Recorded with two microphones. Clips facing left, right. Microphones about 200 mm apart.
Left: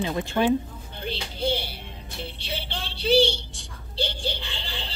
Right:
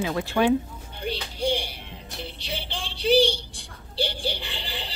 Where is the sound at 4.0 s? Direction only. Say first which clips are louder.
Right 1 dB; 10° right (ahead or behind).